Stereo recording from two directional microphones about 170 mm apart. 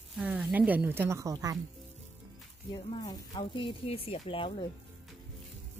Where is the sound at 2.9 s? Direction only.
25° left (ahead or behind).